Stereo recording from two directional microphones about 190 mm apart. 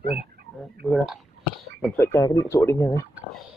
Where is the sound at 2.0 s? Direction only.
15° left (ahead or behind).